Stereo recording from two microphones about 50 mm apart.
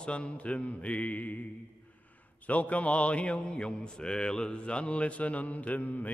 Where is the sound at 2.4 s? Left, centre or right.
Left.